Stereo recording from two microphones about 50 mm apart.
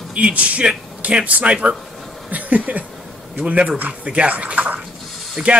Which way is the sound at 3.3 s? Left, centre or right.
Right.